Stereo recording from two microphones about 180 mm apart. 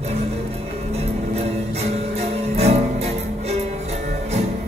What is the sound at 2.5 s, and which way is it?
Music, 35° right (ahead or behind).